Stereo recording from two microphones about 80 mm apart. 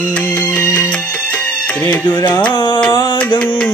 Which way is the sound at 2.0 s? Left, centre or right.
Left.